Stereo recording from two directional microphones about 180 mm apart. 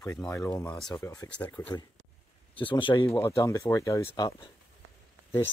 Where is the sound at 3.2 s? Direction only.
15° left (ahead or behind).